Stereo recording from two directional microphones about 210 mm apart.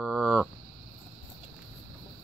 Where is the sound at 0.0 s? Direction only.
Centre (ahead or behind).